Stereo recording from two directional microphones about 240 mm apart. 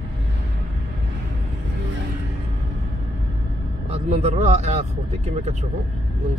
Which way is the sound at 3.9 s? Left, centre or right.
Right.